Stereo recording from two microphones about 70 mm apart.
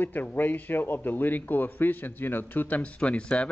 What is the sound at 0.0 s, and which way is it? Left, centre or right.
A man's voice, left.